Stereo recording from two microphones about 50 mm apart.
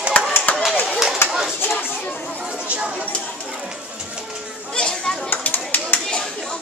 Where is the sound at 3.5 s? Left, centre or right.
Right.